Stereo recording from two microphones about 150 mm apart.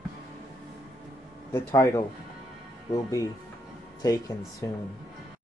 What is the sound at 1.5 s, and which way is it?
Speech, 20° left (ahead or behind).